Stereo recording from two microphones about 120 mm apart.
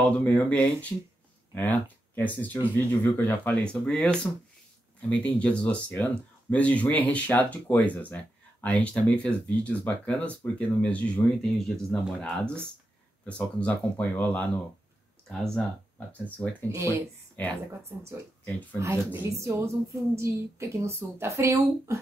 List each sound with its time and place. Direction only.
0.2 s speech: 10° left (ahead or behind)
16.1 s speech: 10° left (ahead or behind)
16.6 s a woman's voice: 25° right (ahead or behind)
17.4 s speech: 15° left (ahead or behind)
18.8 s a woman's voice: 20° right (ahead or behind)